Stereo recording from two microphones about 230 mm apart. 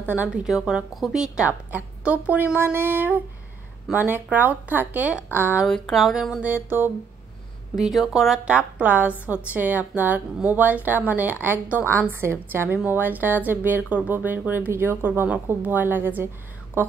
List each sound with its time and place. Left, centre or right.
0.0 s a woman's voice: centre